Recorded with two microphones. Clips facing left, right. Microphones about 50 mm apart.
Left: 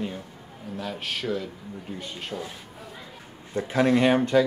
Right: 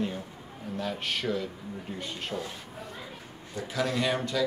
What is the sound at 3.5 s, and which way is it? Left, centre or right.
Speech, left.